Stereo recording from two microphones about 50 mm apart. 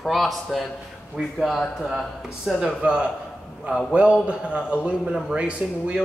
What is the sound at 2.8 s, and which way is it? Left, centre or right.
Speech, right.